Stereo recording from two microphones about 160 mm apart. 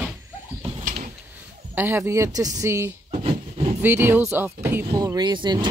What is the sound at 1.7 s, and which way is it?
Speech, 15° right (ahead or behind).